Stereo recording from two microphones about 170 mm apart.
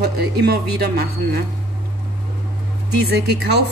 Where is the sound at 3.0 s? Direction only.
75° right (ahead or behind).